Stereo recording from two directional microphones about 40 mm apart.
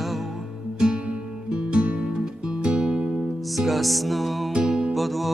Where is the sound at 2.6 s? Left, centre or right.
Right.